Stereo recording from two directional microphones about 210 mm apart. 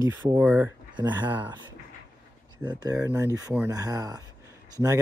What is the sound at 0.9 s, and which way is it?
Speech, 20° right (ahead or behind).